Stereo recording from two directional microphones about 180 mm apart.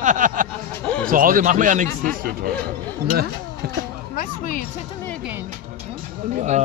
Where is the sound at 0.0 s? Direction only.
45° right (ahead or behind).